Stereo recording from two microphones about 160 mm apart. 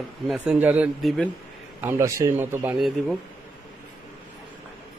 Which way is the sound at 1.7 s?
15° right (ahead or behind).